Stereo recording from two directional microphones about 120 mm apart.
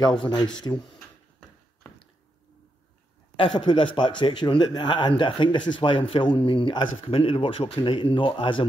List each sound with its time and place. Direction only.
0.2 s speech: 40° left (ahead or behind)
3.4 s a man's voice: 45° left (ahead or behind)